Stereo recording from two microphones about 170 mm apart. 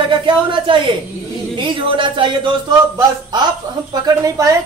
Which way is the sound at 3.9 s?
20° right (ahead or behind).